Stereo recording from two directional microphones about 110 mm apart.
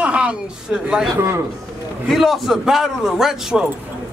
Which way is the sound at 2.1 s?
Centre (ahead or behind).